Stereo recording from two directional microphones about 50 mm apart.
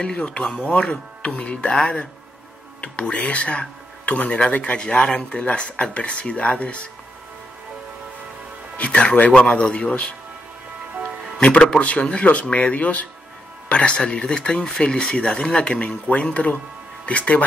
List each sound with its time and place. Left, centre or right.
0.0 s speech: left
8.7 s speech: left
11.4 s speech: centre